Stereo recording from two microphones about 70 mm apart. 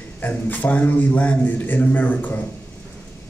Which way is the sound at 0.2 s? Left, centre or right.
Left.